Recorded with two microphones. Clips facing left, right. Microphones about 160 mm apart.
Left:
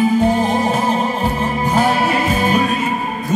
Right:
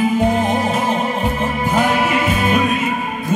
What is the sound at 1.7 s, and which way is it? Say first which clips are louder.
Music: left 1 dB; 35° left (ahead or behind).